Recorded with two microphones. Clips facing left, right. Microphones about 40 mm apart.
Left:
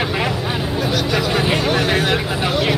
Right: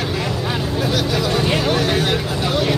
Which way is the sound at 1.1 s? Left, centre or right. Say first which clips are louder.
Left 1 dB; centre.